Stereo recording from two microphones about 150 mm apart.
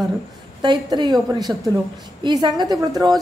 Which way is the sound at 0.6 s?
30° right (ahead or behind).